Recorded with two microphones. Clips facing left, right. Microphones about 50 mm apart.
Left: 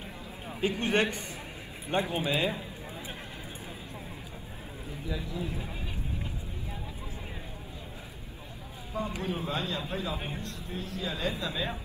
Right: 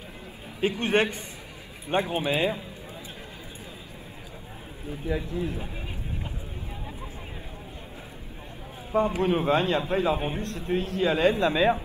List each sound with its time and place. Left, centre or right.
0.6 s a man's voice: right
2.0 s a man's voice: right
5.0 s speech: right
8.9 s a man's voice: right